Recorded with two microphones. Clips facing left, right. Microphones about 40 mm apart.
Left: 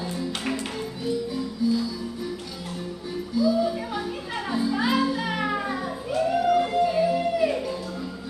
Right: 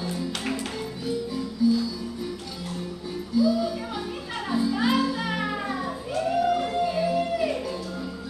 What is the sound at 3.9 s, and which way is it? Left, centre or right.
Music, centre.